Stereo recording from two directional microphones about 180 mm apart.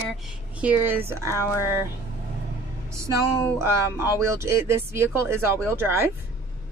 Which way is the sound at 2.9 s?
15° right (ahead or behind).